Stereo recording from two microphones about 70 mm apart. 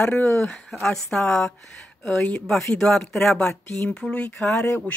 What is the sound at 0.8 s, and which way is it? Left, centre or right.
A woman's voice, centre.